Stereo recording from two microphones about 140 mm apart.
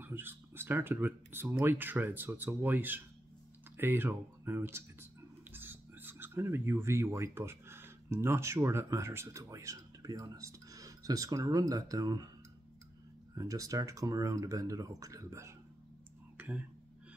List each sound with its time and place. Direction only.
0.0 s speech: 15° right (ahead or behind)
13.3 s speech: 25° right (ahead or behind)
16.3 s a sound: 10° right (ahead or behind)